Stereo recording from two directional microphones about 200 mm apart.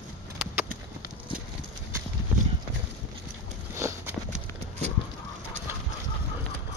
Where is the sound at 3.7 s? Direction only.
15° right (ahead or behind).